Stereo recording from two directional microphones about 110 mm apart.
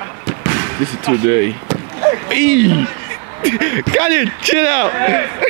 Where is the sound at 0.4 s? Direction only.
20° right (ahead or behind).